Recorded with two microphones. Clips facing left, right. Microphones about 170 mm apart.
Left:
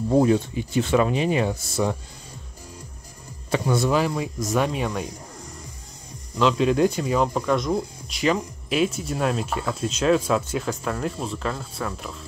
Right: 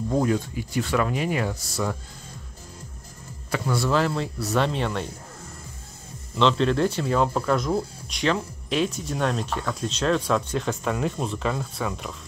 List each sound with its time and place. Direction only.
0.1 s speech: 25° left (ahead or behind)
3.5 s speech: 20° left (ahead or behind)
6.5 s speech: 10° left (ahead or behind)
7.2 s speech: centre (ahead or behind)